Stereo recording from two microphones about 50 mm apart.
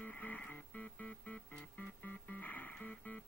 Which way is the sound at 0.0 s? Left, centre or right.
Left.